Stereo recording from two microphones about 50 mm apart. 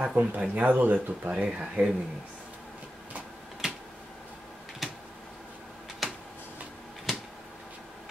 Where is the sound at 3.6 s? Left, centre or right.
Centre.